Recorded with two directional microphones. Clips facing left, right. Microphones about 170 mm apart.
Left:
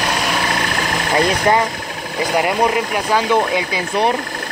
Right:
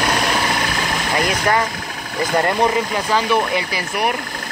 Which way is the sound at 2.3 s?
10° left (ahead or behind).